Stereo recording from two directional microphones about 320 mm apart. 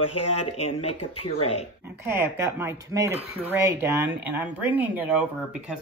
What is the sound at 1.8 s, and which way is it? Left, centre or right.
Speech, centre.